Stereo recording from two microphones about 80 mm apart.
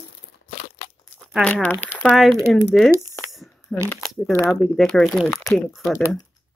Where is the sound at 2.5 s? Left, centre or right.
Centre.